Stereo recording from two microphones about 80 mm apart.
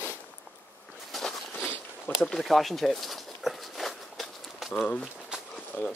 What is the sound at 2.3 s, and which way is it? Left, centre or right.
Walk, centre.